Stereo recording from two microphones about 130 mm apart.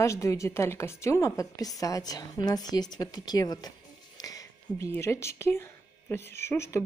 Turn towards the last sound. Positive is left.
turn(degrees=20)  # may be behind; listen again after turning